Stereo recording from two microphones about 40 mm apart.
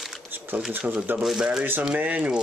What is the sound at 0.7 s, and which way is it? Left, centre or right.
Speech, right.